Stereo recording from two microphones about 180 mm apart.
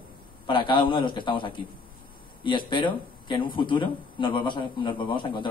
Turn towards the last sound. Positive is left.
turn(degrees=25)  # may be behind; listen again after turning